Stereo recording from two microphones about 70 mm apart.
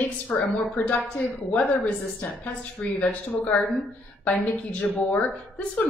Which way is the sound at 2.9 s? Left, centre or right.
Centre.